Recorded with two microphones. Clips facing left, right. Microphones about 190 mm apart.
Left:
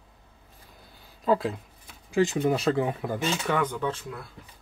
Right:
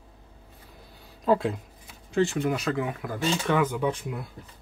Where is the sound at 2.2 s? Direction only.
15° left (ahead or behind).